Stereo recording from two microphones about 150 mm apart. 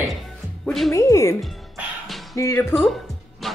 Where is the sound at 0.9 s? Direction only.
20° left (ahead or behind).